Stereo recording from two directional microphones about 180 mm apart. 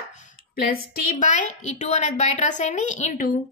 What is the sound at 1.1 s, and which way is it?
A woman's voice, 45° left (ahead or behind).